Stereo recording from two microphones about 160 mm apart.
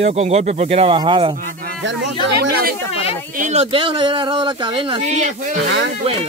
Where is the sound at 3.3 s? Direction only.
45° right (ahead or behind); by 5.0 s 30° right (ahead or behind).